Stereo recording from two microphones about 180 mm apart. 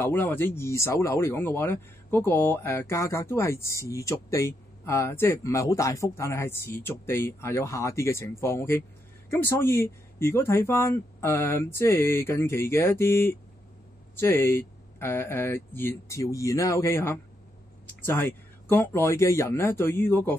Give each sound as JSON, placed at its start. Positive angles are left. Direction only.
{"t": 0.0, "sound": "speech", "side_deg": 10}